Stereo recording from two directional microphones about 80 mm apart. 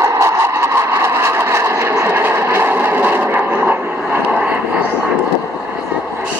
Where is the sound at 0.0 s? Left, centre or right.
Right.